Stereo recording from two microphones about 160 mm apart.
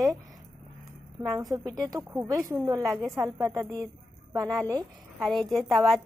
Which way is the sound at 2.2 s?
20° right (ahead or behind).